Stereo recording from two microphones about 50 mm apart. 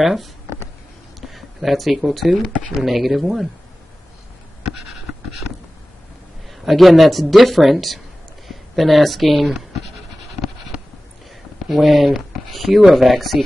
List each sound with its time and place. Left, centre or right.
0.0 s speech: centre
1.2 s a sound: centre
2.0 s speech: centre
6.6 s speech: centre
11.7 s speech: centre